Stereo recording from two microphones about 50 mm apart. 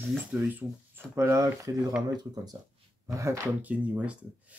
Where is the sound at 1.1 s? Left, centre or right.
Right.